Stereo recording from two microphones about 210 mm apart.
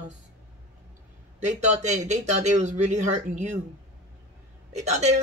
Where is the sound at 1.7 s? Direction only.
35° right (ahead or behind).